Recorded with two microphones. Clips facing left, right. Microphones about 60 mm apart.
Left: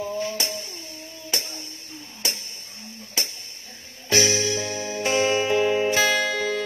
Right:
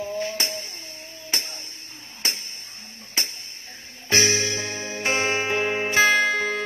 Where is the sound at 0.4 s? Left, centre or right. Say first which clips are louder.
Even; right.